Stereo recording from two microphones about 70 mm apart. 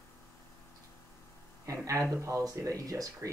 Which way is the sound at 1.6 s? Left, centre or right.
Right.